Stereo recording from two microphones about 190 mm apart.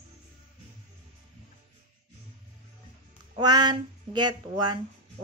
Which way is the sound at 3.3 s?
20° right (ahead or behind).